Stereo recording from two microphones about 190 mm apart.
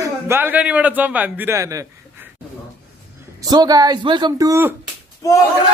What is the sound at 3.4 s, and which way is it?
Speech, 20° right (ahead or behind).